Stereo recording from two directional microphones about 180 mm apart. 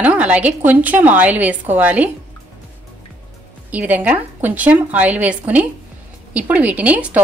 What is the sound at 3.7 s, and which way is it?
A woman's voice, 10° right (ahead or behind).